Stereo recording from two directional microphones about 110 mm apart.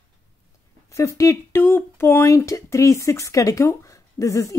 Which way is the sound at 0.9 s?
30° left (ahead or behind).